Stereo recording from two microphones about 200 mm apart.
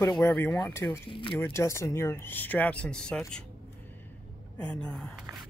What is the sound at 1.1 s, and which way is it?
Speech, 25° left (ahead or behind).